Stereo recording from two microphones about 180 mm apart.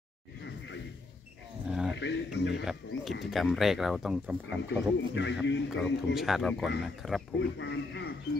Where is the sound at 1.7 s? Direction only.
5° right (ahead or behind).